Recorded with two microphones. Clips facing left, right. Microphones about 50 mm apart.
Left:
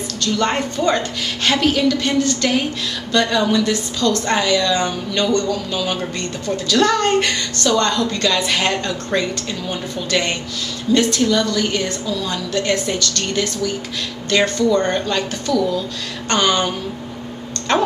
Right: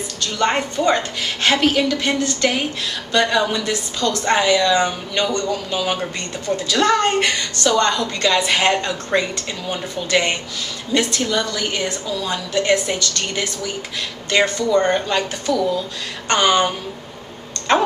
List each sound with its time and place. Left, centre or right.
0.2 s a woman's voice: centre